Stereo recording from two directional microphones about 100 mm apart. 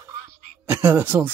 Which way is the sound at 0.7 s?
20° right (ahead or behind).